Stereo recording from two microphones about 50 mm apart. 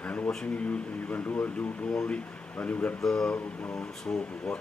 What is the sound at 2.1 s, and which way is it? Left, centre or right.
Speech, left.